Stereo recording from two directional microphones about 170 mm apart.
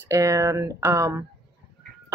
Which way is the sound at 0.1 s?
15° right (ahead or behind).